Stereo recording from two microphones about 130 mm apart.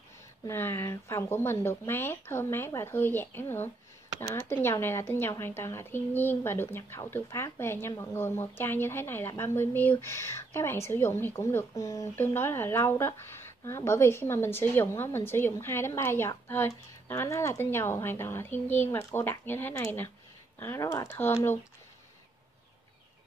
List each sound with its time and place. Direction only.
0.5 s speech: 20° left (ahead or behind)